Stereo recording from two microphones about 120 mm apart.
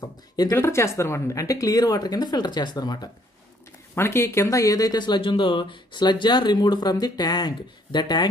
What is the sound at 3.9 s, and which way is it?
Speech, 20° left (ahead or behind).